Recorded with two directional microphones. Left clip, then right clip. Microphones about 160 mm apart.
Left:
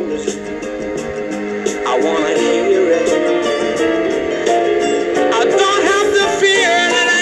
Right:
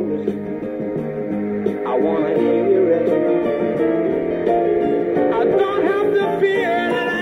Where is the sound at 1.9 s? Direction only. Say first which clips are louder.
Left 4 dB; 45° right (ahead or behind).